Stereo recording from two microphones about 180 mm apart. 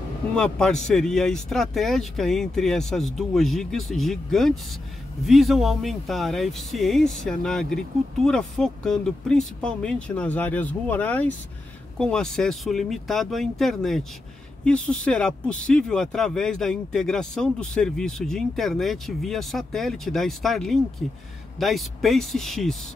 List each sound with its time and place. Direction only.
0.4 s speech: 5° left (ahead or behind)